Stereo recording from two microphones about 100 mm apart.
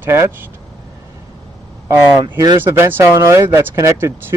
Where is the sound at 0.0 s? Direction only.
25° right (ahead or behind).